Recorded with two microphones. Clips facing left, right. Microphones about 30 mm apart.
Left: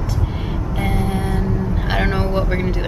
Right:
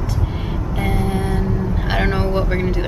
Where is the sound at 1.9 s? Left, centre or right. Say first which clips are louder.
Right 1 dB; centre.